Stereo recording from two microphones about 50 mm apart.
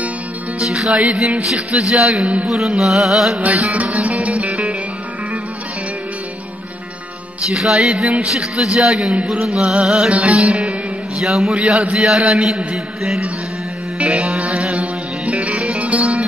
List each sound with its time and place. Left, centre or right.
0.6 s music: centre
3.7 s music: right
7.5 s music: centre
15.8 s music: right